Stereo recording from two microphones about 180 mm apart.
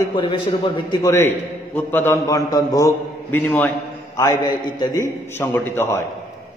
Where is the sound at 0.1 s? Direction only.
30° left (ahead or behind).